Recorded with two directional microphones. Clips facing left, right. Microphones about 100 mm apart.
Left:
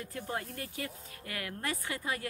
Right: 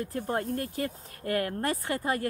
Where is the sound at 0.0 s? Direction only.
40° right (ahead or behind).